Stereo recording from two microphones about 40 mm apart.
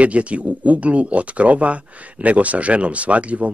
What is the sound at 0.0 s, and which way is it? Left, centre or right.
Speech, right.